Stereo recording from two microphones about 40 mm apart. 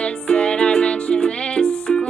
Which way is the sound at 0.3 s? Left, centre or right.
Left.